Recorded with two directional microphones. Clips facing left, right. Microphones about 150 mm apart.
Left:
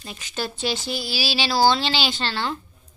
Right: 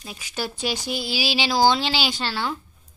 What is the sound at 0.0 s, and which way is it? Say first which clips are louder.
Speech: left 1 dB; 10° right (ahead or behind).